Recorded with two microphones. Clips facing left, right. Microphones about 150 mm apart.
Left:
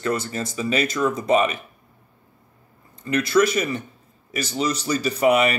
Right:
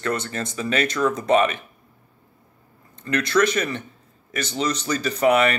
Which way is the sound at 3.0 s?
10° left (ahead or behind).